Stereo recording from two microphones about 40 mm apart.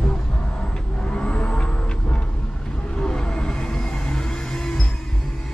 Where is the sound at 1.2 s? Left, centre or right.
Left.